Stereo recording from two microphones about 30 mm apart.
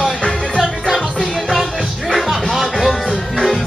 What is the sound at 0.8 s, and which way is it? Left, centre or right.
Music, centre.